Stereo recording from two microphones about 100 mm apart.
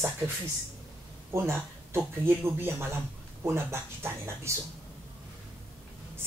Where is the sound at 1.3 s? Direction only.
25° right (ahead or behind).